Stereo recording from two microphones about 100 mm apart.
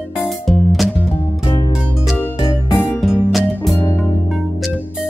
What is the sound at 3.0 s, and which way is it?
Music, 5° right (ahead or behind).